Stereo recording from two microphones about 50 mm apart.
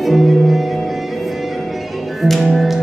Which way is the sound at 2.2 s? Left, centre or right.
Centre.